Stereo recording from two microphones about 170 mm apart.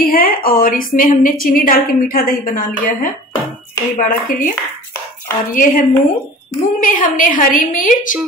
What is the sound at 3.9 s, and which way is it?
Speech, 55° left (ahead or behind).